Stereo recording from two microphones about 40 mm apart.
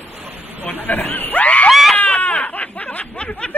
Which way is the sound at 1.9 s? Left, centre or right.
Left.